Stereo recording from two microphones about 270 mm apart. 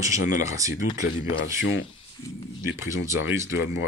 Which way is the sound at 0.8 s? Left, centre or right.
Left.